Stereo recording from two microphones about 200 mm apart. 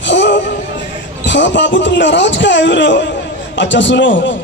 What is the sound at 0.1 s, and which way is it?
Music, 65° left (ahead or behind).